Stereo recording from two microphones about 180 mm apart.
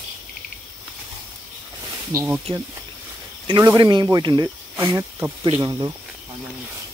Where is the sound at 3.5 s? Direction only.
20° right (ahead or behind).